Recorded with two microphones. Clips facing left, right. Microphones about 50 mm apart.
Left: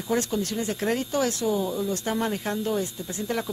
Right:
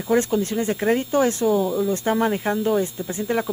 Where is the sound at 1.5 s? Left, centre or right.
Centre.